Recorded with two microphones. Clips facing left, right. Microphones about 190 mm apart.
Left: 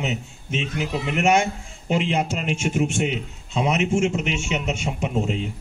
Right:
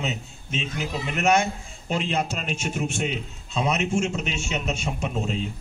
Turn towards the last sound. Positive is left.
turn(degrees=15)  # may be behind; listen again after turning